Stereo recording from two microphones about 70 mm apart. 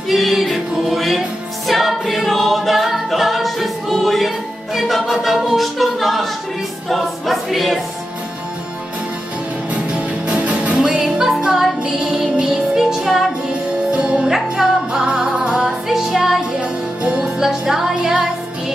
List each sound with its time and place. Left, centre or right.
0.1 s music: centre
1.7 s a capella: centre
6.9 s choir: centre
9.8 s music: centre
13.9 s music: centre
17.0 s music: centre
17.4 s music: centre